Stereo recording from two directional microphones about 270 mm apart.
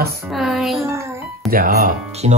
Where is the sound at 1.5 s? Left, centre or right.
Right.